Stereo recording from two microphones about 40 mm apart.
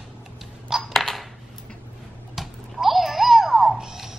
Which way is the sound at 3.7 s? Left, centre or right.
Centre.